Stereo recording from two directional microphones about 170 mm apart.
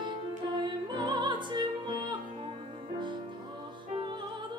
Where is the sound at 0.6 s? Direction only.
25° right (ahead or behind).